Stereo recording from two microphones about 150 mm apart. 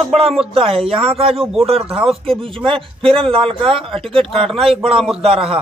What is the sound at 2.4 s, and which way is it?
A man's voice, 35° right (ahead or behind).